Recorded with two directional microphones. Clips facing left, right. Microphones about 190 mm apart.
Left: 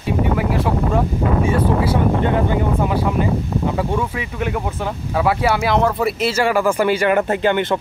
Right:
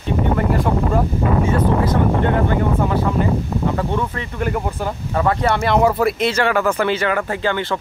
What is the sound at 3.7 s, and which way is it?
Speech, 10° left (ahead or behind).